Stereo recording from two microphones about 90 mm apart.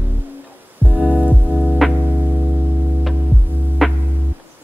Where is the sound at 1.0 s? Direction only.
15° left (ahead or behind).